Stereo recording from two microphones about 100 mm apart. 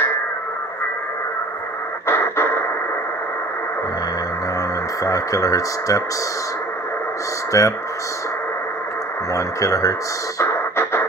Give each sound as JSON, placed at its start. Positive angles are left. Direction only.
{"t": 2.0, "sound": "music", "side_deg": 25}
{"t": 5.0, "sound": "speech", "side_deg": 35}
{"t": 7.5, "sound": "speech", "side_deg": 35}
{"t": 9.3, "sound": "speech", "side_deg": 35}
{"t": 10.4, "sound": "music", "side_deg": 25}